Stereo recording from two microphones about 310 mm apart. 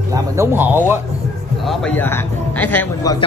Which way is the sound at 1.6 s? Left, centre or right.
Centre.